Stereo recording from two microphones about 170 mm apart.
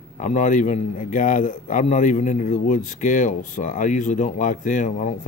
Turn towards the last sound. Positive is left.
turn(degrees=45)  # may be behind; listen again after turning